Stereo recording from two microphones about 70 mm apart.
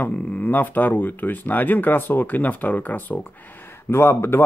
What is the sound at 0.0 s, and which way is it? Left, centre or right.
Speech, centre.